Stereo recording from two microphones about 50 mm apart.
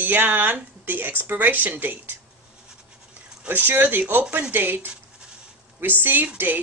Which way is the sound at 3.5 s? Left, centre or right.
Right.